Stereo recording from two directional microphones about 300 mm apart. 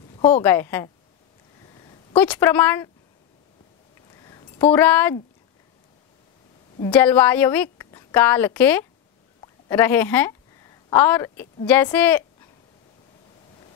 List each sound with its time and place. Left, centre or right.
0.4 s a woman's voice: centre
2.1 s a woman's voice: centre
4.2 s a sound: centre
4.7 s speech: centre
6.8 s a woman's voice: centre